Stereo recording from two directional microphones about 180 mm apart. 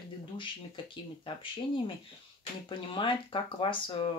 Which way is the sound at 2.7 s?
25° left (ahead or behind).